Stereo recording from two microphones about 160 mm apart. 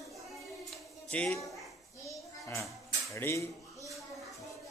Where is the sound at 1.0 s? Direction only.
10° left (ahead or behind).